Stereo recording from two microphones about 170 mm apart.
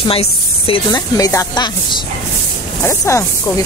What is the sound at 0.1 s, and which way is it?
Speech, 35° left (ahead or behind).